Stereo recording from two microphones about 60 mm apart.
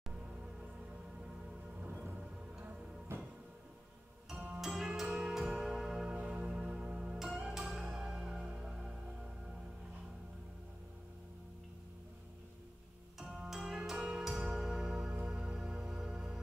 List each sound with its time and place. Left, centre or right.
3.1 s music: right
4.6 s music: centre
13.2 s music: centre